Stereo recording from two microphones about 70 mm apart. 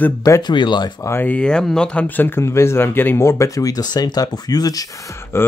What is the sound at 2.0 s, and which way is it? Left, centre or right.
Speech, left.